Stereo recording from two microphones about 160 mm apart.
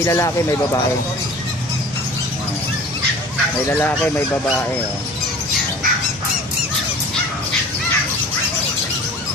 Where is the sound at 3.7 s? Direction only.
10° left (ahead or behind).